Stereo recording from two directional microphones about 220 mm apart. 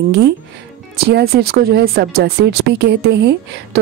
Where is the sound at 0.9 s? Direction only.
45° right (ahead or behind).